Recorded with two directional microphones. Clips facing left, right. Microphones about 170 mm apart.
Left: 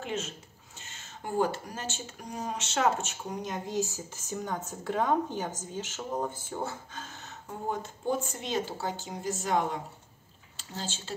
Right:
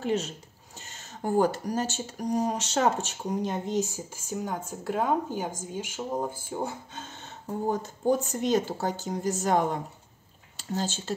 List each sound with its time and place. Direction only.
0.0 s speech: 35° right (ahead or behind)